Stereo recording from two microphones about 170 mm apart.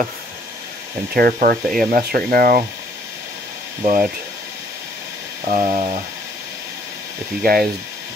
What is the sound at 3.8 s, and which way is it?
Speech, 45° right (ahead or behind).